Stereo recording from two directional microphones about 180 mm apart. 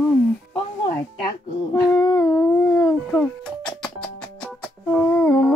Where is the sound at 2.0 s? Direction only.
20° left (ahead or behind).